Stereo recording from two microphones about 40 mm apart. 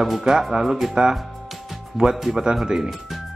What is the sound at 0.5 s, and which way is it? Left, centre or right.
Speech, centre.